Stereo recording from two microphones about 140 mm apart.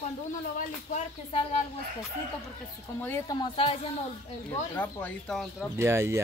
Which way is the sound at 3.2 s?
30° left (ahead or behind).